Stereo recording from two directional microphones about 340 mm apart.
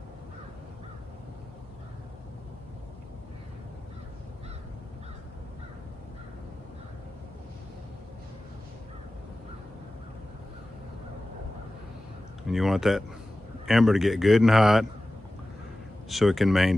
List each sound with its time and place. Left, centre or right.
12.4 s a man's voice: centre
16.1 s a man's voice: centre